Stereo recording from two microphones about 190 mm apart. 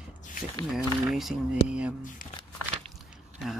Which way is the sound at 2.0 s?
45° left (ahead or behind).